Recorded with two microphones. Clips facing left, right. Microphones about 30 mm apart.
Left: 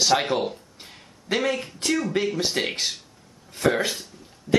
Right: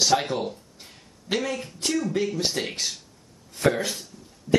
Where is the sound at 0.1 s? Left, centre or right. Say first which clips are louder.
Left 2 dB; left.